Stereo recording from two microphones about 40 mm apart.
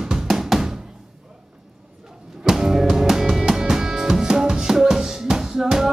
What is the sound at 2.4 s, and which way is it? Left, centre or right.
Music, centre.